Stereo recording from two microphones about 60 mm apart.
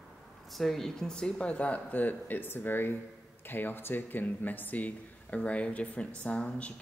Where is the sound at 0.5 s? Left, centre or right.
Centre.